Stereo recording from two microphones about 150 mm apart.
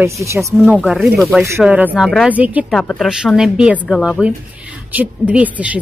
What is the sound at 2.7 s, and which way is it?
A woman's voice, centre (ahead or behind).